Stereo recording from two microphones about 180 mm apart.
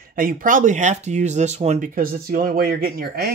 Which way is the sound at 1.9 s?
55° right (ahead or behind).